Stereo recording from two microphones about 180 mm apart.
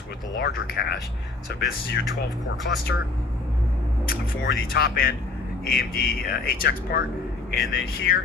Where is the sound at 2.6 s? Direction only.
60° left (ahead or behind).